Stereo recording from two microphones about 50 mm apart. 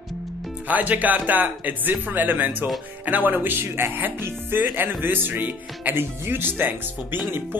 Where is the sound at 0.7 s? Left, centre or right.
Right.